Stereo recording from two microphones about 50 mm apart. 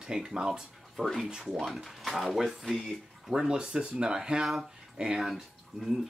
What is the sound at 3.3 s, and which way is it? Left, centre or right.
Speech, centre.